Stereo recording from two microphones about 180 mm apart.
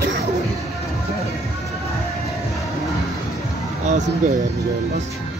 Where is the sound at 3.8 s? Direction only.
45° right (ahead or behind).